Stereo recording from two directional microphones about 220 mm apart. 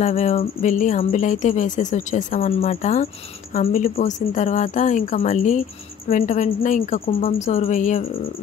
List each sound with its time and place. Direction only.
0.0 s a woman's voice: 35° left (ahead or behind)